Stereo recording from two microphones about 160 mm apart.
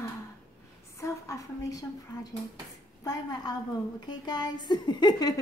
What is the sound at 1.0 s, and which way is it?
A woman's voice, 20° left (ahead or behind).